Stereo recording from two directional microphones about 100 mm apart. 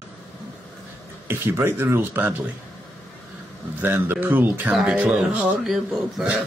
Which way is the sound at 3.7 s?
20° right (ahead or behind).